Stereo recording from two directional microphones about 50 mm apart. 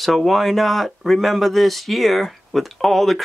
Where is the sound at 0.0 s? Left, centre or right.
Centre.